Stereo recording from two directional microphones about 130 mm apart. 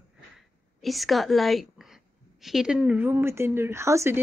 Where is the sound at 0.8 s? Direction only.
Centre (ahead or behind).